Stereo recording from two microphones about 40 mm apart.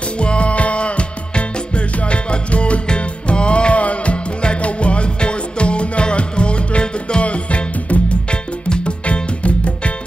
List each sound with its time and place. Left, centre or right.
0.2 s music: left